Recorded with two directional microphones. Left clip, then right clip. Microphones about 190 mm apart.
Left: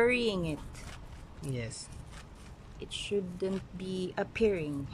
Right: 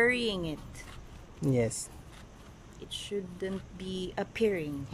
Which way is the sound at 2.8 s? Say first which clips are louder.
Left 3 dB; 10° left (ahead or behind).